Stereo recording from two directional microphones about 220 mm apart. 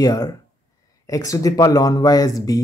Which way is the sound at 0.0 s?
15° left (ahead or behind).